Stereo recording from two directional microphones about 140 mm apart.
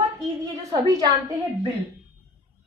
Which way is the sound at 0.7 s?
25° right (ahead or behind).